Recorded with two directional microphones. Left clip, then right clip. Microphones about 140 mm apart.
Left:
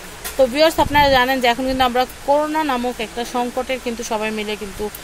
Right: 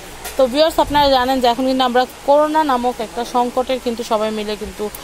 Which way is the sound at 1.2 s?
15° right (ahead or behind).